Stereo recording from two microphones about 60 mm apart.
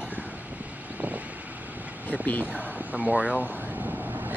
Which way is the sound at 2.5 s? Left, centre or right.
Right.